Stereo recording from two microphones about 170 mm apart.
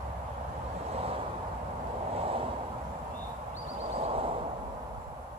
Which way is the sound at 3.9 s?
35° right (ahead or behind).